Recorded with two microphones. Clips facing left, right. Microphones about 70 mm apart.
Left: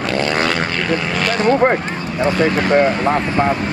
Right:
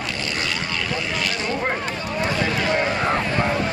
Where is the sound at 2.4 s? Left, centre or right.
Left.